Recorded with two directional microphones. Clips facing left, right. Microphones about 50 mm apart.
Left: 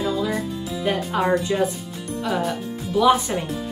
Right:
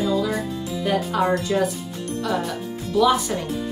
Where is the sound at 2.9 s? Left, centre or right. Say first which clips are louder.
Left 1 dB; centre.